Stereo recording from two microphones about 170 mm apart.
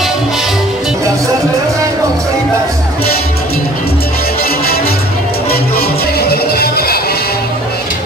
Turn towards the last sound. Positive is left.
turn(degrees=65)  # may be behind; listen again after turning